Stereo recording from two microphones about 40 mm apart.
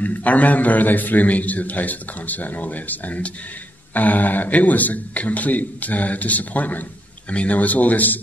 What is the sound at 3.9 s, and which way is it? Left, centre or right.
Speech, left.